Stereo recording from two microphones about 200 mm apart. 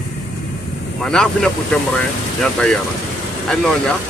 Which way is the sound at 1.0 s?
5° left (ahead or behind).